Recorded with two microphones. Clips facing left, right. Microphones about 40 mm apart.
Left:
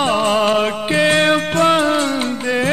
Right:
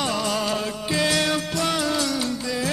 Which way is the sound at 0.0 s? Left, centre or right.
Left.